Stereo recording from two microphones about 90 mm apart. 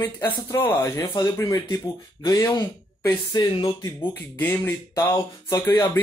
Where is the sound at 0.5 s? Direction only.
25° left (ahead or behind).